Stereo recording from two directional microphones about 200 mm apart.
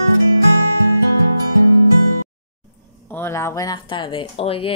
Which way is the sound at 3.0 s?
10° left (ahead or behind).